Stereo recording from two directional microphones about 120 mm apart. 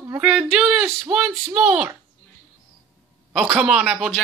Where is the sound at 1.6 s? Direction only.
15° right (ahead or behind).